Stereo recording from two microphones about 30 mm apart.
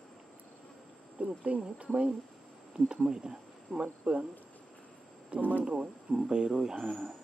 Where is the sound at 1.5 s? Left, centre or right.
Right.